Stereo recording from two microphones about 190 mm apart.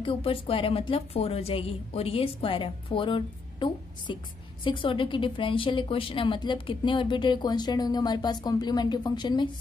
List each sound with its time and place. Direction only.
0.0 s a woman's voice: 30° left (ahead or behind)